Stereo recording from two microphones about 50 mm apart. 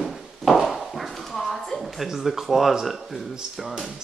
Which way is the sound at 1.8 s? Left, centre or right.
Centre.